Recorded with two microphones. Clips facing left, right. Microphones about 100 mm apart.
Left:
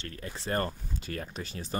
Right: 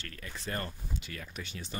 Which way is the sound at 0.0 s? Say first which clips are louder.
Left 3 dB; 30° left (ahead or behind).